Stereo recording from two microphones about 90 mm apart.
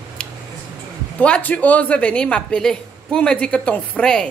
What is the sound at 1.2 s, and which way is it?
Speech, 15° left (ahead or behind).